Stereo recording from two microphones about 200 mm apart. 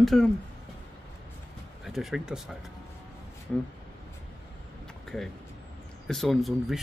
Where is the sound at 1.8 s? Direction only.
Centre (ahead or behind).